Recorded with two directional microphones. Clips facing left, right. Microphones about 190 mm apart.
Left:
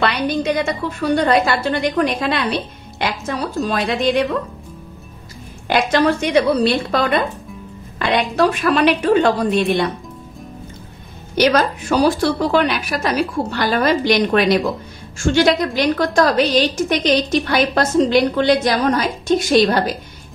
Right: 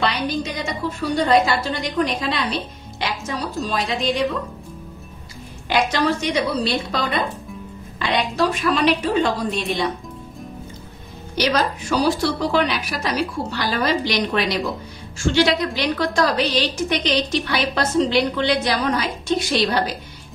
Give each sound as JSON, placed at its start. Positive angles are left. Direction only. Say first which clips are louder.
{"t": 0.0, "sound": "a woman's voice", "louder": "left 4 dB", "side_deg": 65}
{"t": 5.7, "sound": "a woman's voice", "louder": "left 4 dB", "side_deg": 55}
{"t": 11.3, "sound": "a woman's voice", "louder": "left 5 dB", "side_deg": 55}